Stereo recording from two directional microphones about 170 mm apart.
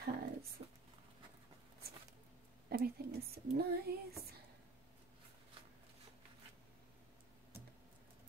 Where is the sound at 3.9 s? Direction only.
60° right (ahead or behind).